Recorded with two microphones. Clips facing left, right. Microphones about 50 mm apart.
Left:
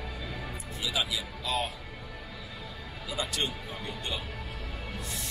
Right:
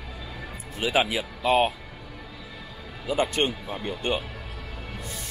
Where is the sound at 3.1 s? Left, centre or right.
Right.